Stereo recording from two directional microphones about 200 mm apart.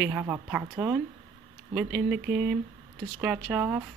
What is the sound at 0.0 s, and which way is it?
A woman's voice, 5° right (ahead or behind).